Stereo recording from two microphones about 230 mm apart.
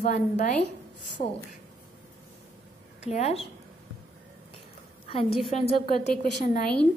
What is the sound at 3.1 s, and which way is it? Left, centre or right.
Speech, left.